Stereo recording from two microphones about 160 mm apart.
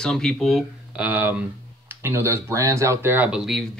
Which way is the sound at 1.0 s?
10° right (ahead or behind).